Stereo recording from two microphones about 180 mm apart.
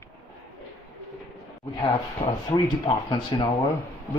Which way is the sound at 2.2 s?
25° left (ahead or behind).